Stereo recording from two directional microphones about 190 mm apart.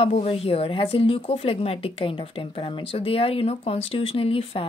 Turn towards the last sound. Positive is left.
turn(degrees=30)  # may be behind; listen again after turning